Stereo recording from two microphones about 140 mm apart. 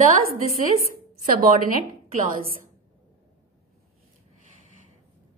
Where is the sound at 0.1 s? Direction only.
90° right.